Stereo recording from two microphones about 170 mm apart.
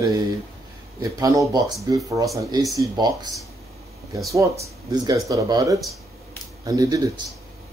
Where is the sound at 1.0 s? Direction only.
20° right (ahead or behind).